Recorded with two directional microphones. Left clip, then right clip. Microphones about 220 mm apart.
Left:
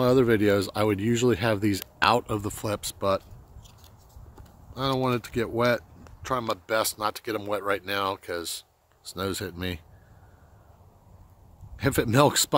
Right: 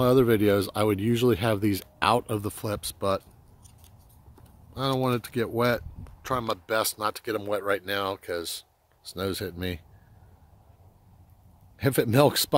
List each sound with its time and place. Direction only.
0.0 s speech: 10° right (ahead or behind)
11.8 s speech: 10° right (ahead or behind)